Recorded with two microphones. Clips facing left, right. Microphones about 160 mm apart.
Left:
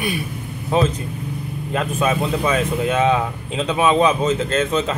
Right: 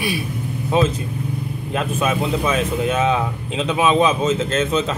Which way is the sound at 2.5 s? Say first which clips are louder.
Left 1 dB; 20° right (ahead or behind).